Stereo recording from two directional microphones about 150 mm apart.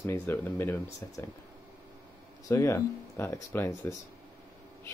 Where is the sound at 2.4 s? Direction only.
20° left (ahead or behind).